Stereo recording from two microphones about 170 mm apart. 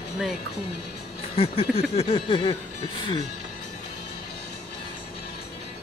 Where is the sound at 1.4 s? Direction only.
35° left (ahead or behind).